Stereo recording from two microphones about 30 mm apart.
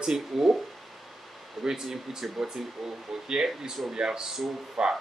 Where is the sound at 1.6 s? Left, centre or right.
Centre.